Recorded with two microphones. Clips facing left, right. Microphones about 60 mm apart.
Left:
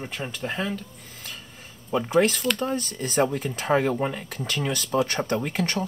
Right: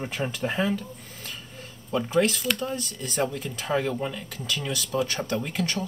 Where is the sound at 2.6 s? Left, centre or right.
Left.